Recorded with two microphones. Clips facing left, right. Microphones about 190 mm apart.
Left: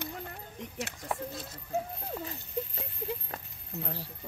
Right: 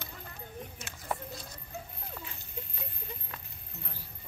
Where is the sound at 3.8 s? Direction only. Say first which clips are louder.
Left 10 dB; 75° left (ahead or behind).